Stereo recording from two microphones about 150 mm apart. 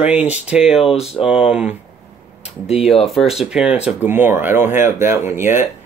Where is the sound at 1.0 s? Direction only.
45° left (ahead or behind).